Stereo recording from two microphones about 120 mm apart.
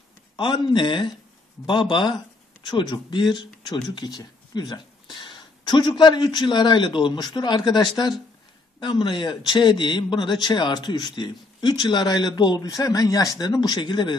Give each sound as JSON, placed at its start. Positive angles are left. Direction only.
{"t": 0.4, "sound": "speech", "side_deg": 40}